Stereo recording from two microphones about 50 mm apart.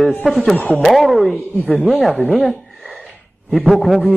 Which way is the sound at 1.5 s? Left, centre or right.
Left.